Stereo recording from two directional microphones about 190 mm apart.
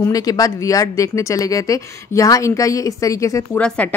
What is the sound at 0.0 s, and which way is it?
Speech, 20° left (ahead or behind).